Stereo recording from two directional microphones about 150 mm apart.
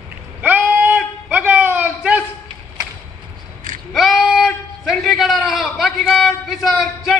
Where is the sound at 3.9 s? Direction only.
Centre (ahead or behind).